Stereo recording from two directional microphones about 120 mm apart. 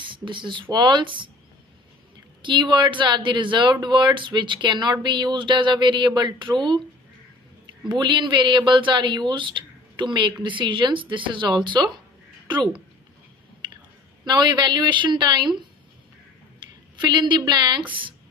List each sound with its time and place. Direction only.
0.0 s speech: 45° right (ahead or behind)
2.4 s speech: 40° right (ahead or behind)
7.9 s speech: 40° right (ahead or behind)
14.2 s speech: 35° right (ahead or behind)
17.0 s speech: 40° right (ahead or behind)